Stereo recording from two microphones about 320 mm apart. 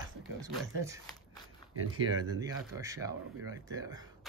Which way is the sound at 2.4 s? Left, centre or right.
Centre.